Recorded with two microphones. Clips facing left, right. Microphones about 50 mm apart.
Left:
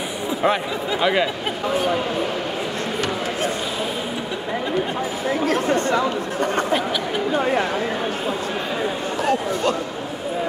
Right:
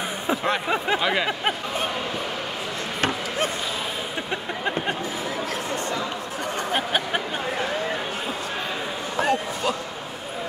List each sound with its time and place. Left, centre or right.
0.9 s a sound: centre
5.5 s speech: left
9.2 s speech: centre